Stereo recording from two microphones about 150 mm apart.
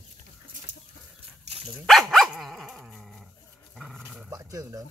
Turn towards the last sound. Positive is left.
turn(degrees=-25)  # may be behind; listen again after turning